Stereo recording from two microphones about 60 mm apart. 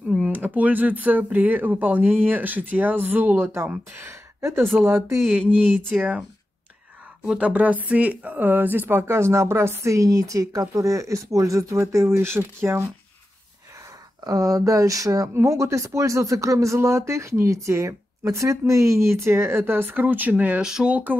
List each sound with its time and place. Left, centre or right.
0.3 s speech: right
5.9 s speech: right
7.3 s speech: right
14.2 s speech: right
15.3 s speech: right
20.6 s speech: centre
20.9 s speech: right